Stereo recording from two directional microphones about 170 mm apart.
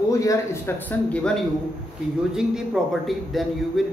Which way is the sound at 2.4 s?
Centre (ahead or behind).